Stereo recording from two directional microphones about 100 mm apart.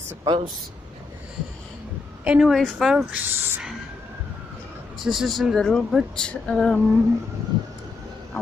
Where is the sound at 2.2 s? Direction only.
10° right (ahead or behind).